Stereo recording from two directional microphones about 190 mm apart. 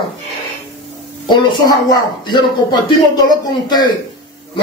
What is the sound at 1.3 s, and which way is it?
A man's voice, 20° left (ahead or behind).